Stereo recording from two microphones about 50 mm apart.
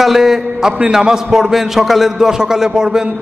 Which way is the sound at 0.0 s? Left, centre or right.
Centre.